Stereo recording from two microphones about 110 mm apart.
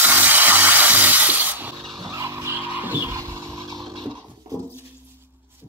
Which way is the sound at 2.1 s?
30° right (ahead or behind).